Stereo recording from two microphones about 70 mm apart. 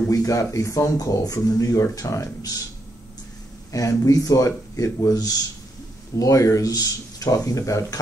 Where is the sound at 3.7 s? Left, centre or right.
Left.